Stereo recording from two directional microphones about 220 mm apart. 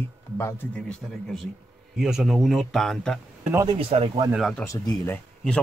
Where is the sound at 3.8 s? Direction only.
25° right (ahead or behind).